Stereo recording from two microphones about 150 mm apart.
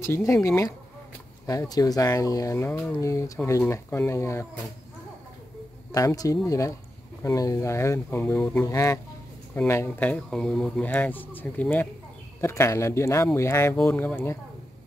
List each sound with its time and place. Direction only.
0.0 s speech: 20° left (ahead or behind)
5.9 s speech: 25° left (ahead or behind)